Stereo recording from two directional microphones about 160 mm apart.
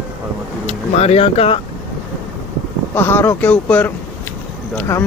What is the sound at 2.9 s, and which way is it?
Speech, 15° left (ahead or behind).